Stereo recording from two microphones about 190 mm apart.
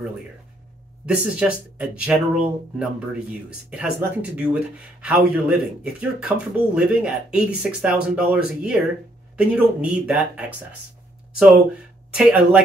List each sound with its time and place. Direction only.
1.0 s speech: 5° right (ahead or behind)
12.1 s speech: 5° right (ahead or behind)